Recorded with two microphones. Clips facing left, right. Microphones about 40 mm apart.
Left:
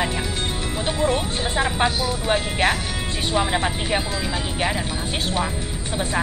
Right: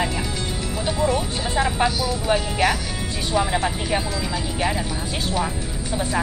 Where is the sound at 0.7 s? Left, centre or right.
Left.